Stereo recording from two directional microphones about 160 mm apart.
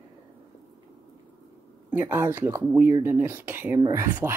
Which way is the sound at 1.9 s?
10° right (ahead or behind).